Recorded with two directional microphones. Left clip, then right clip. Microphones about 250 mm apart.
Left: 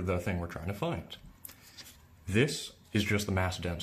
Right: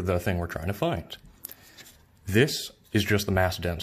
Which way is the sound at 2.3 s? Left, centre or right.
Right.